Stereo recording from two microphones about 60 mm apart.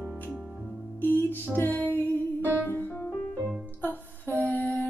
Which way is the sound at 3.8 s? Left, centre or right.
Left.